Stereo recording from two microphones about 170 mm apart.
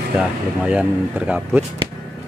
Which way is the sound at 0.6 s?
5° right (ahead or behind).